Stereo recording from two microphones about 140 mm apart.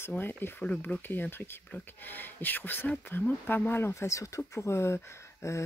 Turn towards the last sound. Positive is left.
turn(degrees=20)  # may be behind; listen again after turning